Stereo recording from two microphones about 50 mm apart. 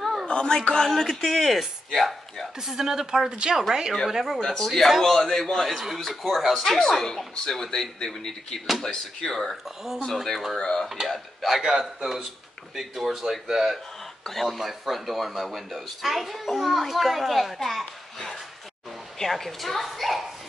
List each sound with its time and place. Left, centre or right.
0.0 s a sound: centre
0.3 s speech: centre
2.6 s a woman's voice: centre
4.5 s speech: centre
6.6 s speech: centre
11.4 s speech: centre